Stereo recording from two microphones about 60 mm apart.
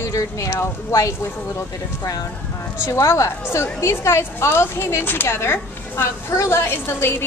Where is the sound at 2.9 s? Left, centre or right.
Left.